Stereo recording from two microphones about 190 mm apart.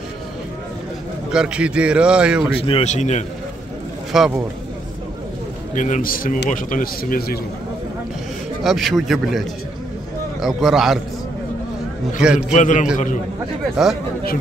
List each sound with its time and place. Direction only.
1.3 s a man's voice: 5° right (ahead or behind)
2.6 s speech: 35° left (ahead or behind)
4.1 s a man's voice: centre (ahead or behind)
5.8 s a man's voice: 40° left (ahead or behind)
8.6 s a man's voice: centre (ahead or behind)
12.5 s speech: 40° left (ahead or behind)
13.8 s a man's voice: centre (ahead or behind)